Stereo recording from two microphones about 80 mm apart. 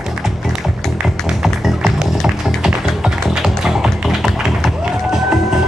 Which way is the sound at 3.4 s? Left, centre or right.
Centre.